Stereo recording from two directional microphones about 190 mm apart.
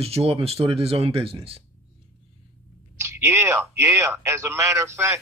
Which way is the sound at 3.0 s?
15° right (ahead or behind).